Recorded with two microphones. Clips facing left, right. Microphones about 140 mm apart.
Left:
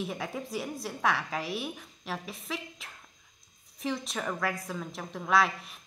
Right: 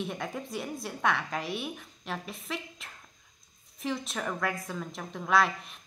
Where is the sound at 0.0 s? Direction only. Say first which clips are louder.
Even; centre (ahead or behind).